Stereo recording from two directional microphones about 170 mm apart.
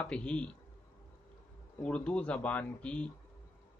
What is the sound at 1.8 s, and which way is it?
Speech, 5° left (ahead or behind).